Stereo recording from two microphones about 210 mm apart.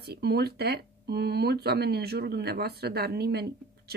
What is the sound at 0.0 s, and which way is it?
Speech, 50° right (ahead or behind).